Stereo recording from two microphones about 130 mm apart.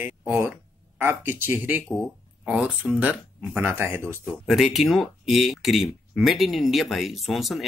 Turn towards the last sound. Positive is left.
turn(degrees=0)  # may be behind; listen again after turning